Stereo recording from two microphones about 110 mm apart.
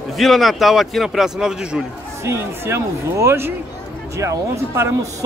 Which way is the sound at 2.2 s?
25° right (ahead or behind).